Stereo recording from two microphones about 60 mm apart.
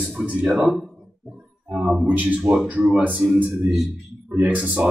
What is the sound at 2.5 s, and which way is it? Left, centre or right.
Speech, right.